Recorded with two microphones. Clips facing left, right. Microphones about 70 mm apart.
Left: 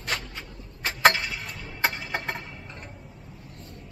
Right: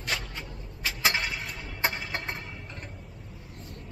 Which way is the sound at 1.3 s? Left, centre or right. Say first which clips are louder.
Even; centre.